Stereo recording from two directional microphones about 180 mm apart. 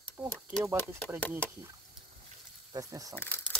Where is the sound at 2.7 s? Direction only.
20° right (ahead or behind).